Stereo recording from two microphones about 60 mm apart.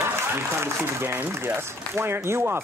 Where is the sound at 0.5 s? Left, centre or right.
Right.